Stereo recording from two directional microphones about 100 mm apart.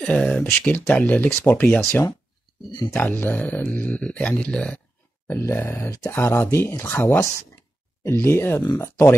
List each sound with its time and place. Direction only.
0.0 s speech: 10° left (ahead or behind)
5.3 s speech: 25° left (ahead or behind)